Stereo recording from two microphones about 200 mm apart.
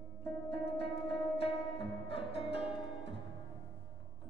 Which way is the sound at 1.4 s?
25° left (ahead or behind).